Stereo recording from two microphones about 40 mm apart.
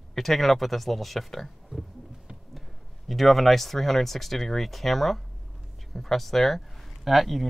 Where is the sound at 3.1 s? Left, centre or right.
Centre.